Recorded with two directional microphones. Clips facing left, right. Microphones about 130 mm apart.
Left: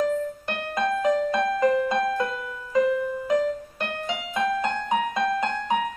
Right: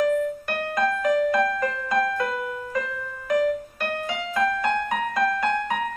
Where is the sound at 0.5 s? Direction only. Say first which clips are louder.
Right 1 dB; 20° left (ahead or behind).